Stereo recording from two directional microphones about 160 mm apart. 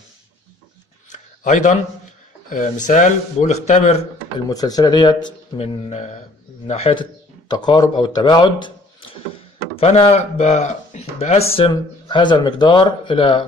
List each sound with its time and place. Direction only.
1.1 s a sound: 50° left (ahead or behind)
2.5 s speech: 50° left (ahead or behind)
4.5 s a man's voice: 25° left (ahead or behind)
9.8 s speech: 40° left (ahead or behind)